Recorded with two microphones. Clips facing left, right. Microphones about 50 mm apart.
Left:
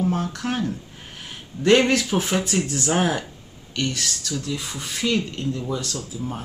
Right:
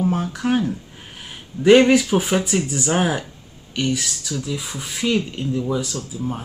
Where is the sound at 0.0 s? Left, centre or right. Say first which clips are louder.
Right 3 dB; centre.